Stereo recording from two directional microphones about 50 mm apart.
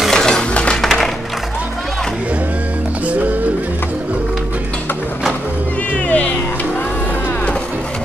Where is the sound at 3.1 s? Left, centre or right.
Right.